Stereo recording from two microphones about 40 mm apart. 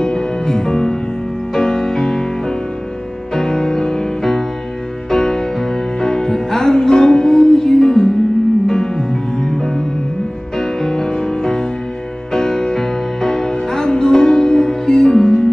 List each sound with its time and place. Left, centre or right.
0.0 s music: centre
3.3 s music: centre